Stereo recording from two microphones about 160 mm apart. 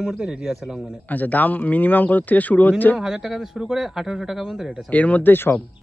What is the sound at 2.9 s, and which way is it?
Speech, 5° right (ahead or behind).